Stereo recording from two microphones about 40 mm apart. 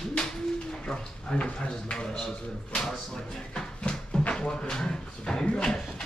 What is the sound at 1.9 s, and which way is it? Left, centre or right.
Speech, centre.